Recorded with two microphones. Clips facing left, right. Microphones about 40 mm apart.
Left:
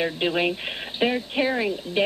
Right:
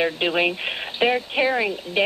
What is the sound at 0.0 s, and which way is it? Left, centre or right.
Speech, centre.